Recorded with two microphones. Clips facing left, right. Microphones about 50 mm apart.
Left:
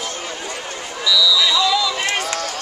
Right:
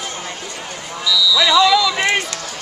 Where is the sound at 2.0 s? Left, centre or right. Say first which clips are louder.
Right 4 dB; right.